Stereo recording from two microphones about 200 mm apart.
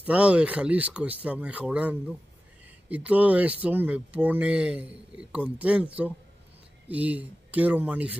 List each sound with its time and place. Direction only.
0.0 s speech: 5° right (ahead or behind)